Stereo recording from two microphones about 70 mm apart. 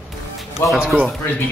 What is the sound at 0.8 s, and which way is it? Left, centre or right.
Speech, centre.